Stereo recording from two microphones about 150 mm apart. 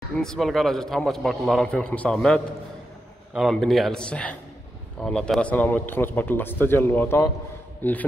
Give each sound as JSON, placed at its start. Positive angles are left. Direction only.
{"t": 0.2, "sound": "a man's voice", "side_deg": 5}